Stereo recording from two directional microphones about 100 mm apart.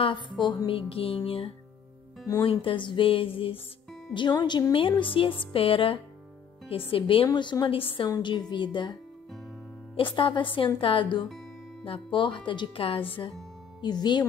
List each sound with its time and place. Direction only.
0.0 s a woman's voice: 50° left (ahead or behind)
0.7 s music: 65° left (ahead or behind)
2.4 s speech: 60° left (ahead or behind)
4.1 s a woman's voice: 50° left (ahead or behind)
4.7 s speech: 60° left (ahead or behind)
8.2 s a woman's voice: 50° left (ahead or behind)
9.9 s speech: 60° left (ahead or behind)
13.7 s a woman's voice: 45° left (ahead or behind)